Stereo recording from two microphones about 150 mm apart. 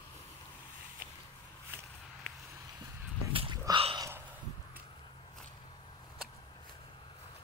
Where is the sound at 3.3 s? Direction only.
35° right (ahead or behind).